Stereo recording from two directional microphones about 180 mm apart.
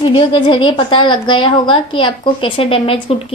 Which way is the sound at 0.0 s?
30° left (ahead or behind).